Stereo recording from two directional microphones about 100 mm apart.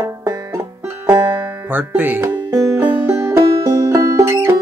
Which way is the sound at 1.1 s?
50° right (ahead or behind).